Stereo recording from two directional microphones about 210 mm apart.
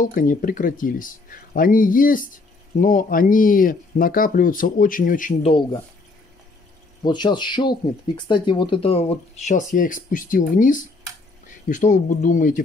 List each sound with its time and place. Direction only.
0.0 s speech: 40° left (ahead or behind)
7.1 s speech: 20° left (ahead or behind); by 12.6 s 40° left (ahead or behind)